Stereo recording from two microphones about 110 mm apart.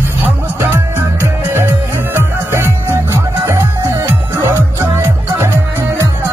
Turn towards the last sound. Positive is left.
turn(degrees=-20)  # may be behind; listen again after turning